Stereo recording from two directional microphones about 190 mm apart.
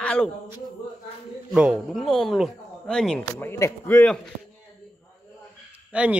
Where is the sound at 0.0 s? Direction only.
5° left (ahead or behind).